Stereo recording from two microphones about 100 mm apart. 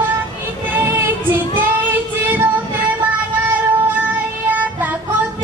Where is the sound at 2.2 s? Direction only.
15° right (ahead or behind).